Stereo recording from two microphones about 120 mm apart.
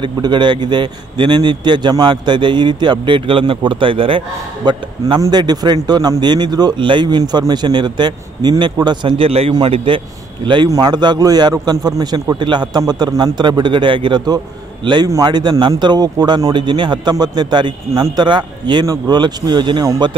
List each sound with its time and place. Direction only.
0.0 s a man's voice: 40° right (ahead or behind)
4.6 s a man's voice: 35° right (ahead or behind)